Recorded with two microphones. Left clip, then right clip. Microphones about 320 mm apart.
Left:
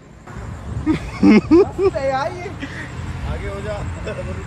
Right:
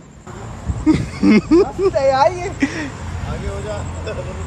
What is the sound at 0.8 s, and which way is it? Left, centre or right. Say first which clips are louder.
Speech: right 1 dB; centre.